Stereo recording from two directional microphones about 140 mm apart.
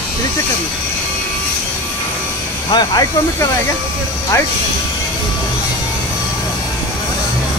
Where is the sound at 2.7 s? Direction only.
25° left (ahead or behind).